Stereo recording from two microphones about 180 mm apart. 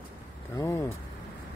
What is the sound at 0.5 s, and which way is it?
Speech, 15° left (ahead or behind).